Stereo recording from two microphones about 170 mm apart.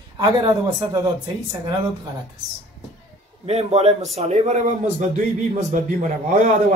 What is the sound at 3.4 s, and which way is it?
Speech, 40° right (ahead or behind).